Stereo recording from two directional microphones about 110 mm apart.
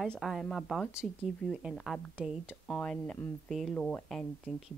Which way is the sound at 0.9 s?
5° right (ahead or behind).